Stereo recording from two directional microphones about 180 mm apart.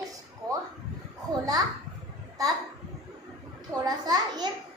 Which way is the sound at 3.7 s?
20° right (ahead or behind).